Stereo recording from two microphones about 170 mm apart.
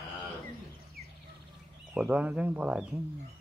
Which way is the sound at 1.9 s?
10° right (ahead or behind).